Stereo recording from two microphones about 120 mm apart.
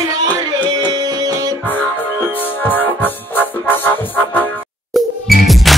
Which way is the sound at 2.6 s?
15° left (ahead or behind).